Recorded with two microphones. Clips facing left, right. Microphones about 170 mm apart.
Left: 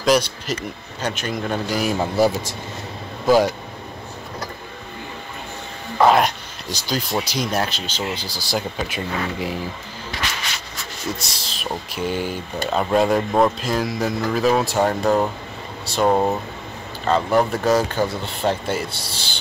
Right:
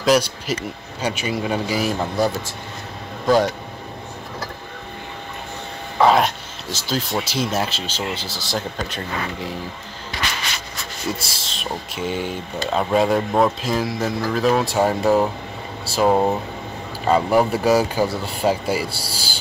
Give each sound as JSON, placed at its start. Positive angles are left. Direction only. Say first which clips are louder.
{"t": 0.0, "sound": "speech", "louder": "right 1 dB", "side_deg": -5}
{"t": 5.9, "sound": "speech", "louder": "even", "side_deg": 0}
{"t": 8.2, "sound": "speech", "louder": "left 1 dB", "side_deg": -20}
{"t": 8.5, "sound": "speech", "louder": "left 2 dB", "side_deg": 10}
{"t": 11.3, "sound": "speech", "louder": "even", "side_deg": 0}